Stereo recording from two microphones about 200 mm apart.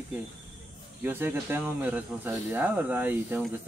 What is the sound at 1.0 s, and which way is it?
Speech, 10° right (ahead or behind).